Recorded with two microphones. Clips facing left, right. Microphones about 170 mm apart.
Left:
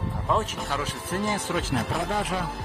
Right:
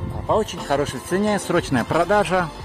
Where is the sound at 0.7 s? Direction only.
55° right (ahead or behind); by 2.4 s 80° right.